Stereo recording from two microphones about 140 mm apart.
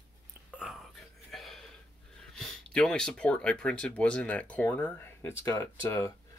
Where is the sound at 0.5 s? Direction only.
5° right (ahead or behind).